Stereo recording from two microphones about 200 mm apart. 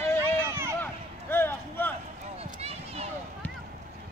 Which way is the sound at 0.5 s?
15° right (ahead or behind).